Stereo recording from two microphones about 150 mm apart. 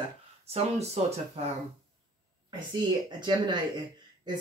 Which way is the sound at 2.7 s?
30° right (ahead or behind).